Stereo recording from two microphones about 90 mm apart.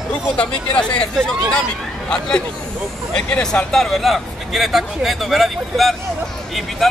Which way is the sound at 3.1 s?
10° left (ahead or behind).